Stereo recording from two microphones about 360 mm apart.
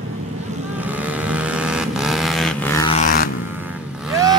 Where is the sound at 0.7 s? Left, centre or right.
Centre.